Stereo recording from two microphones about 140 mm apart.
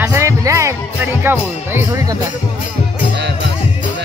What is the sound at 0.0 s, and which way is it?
Music, 20° right (ahead or behind).